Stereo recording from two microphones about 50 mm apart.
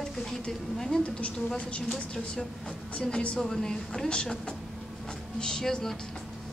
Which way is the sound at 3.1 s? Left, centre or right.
Left.